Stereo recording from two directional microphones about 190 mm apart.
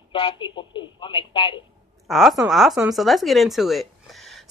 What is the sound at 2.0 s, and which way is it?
Speech, centre (ahead or behind).